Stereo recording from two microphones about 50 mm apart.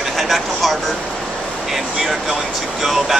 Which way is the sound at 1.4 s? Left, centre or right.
Centre.